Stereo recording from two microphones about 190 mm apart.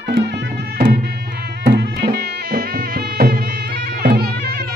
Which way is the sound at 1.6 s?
60° right (ahead or behind).